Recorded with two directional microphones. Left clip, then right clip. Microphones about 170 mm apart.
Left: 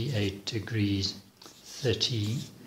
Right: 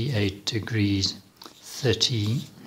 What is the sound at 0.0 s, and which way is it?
Speech, 25° right (ahead or behind).